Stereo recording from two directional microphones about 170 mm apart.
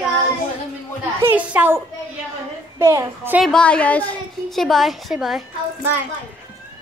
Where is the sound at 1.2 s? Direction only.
10° right (ahead or behind).